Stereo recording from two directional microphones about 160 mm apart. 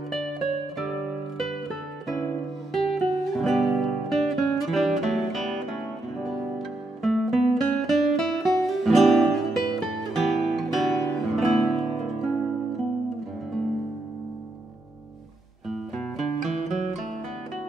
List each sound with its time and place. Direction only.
1.4 s music: centre (ahead or behind)
7.0 s music: centre (ahead or behind)
15.7 s music: centre (ahead or behind)
16.4 s music: 50° right (ahead or behind)